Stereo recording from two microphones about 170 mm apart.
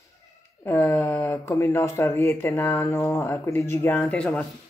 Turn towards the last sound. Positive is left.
turn(degrees=5)  # may be behind; listen again after turning